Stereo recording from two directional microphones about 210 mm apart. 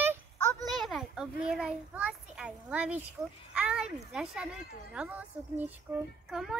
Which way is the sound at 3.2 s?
15° right (ahead or behind).